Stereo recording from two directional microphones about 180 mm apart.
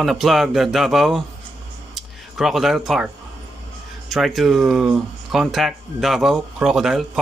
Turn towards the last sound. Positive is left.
turn(degrees=0)  # may be behind; listen again after turning